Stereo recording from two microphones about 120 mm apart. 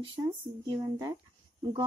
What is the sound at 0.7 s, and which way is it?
Speech, 35° right (ahead or behind).